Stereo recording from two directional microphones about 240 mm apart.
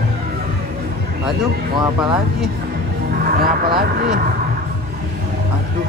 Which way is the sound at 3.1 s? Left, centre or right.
Right.